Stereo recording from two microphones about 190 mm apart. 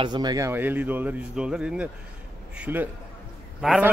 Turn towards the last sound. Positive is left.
turn(degrees=0)  # may be behind; listen again after turning